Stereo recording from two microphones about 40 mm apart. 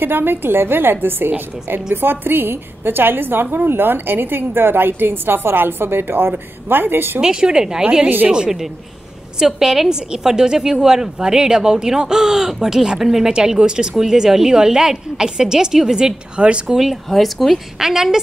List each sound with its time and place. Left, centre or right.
0.0 s a woman's voice: right
7.2 s a woman's voice: centre
16.6 s a woman's voice: centre
17.7 s a woman's voice: centre